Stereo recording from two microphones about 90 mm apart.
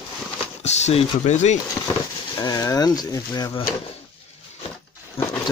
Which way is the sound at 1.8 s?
45° left (ahead or behind).